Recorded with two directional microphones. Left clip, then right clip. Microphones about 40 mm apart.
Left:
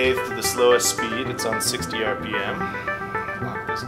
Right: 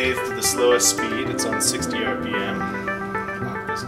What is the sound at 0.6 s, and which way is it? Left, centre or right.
Speech, left.